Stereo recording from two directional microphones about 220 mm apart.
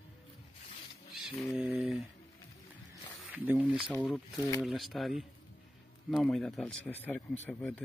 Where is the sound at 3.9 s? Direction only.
5° left (ahead or behind).